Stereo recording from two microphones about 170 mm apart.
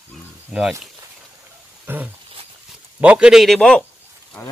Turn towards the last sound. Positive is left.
turn(degrees=5)  # may be behind; listen again after turning